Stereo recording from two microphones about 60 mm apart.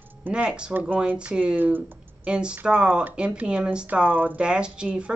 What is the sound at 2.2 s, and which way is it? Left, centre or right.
Speech, centre.